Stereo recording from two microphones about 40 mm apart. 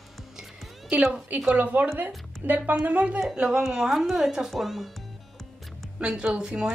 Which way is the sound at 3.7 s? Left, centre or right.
Centre.